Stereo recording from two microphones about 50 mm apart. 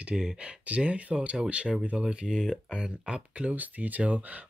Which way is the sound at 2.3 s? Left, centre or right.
Centre.